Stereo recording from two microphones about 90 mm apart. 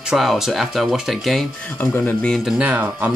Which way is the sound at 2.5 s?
15° right (ahead or behind).